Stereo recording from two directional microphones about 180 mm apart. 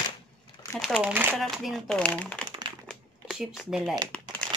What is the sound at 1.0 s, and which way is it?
Mantra, 10° right (ahead or behind).